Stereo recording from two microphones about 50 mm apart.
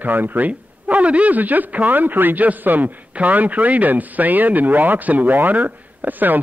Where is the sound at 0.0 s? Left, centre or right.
Right.